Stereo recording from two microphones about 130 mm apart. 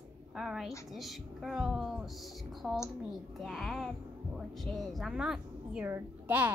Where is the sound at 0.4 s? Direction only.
Centre (ahead or behind).